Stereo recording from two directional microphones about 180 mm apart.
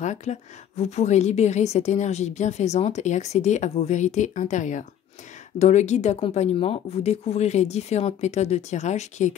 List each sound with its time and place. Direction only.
0.0 s a woman's voice: 40° left (ahead or behind)